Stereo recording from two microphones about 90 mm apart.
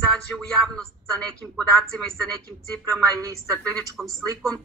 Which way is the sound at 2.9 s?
40° right (ahead or behind).